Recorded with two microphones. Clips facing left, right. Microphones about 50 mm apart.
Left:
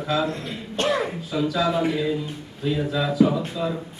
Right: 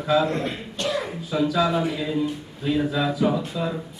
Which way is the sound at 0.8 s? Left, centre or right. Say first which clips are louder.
Left 4 dB; left.